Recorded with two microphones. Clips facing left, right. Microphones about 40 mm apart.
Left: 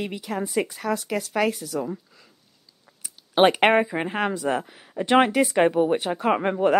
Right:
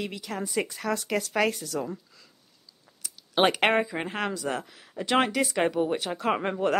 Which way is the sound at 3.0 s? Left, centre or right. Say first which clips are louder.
Left 5 dB; centre.